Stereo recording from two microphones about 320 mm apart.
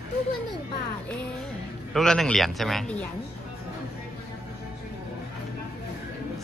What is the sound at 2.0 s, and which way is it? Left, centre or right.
Speech, centre.